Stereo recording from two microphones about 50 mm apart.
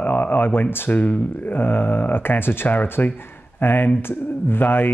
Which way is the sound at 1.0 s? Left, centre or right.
Left.